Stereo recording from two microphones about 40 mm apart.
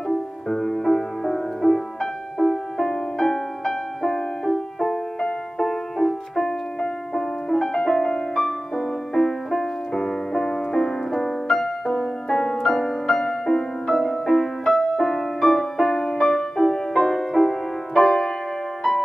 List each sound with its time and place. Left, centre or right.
0.5 s music: centre
11.4 s music: centre